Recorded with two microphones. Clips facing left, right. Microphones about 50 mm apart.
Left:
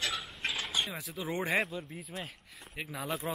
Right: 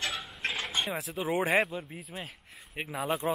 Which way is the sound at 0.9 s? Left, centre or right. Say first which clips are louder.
Right 6 dB; centre.